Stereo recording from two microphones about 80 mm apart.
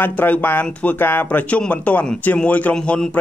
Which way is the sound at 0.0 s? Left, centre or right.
Left.